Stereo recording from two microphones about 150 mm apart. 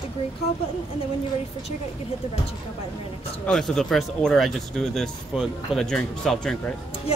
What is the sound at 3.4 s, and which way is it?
Speech, 5° left (ahead or behind).